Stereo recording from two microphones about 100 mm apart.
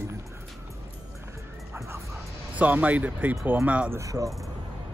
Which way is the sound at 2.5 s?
15° right (ahead or behind).